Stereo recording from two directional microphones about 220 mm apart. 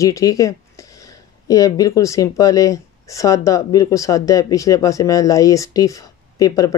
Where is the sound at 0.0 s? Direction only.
15° left (ahead or behind).